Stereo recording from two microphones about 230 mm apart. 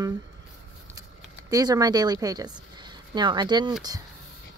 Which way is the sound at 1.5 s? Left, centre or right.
Centre.